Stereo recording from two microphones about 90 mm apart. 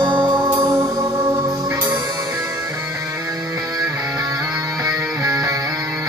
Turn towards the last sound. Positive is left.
turn(degrees=-40)  # may be behind; listen again after turning